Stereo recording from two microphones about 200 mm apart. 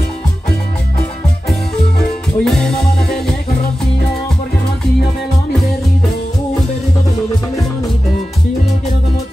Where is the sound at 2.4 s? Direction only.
Centre (ahead or behind).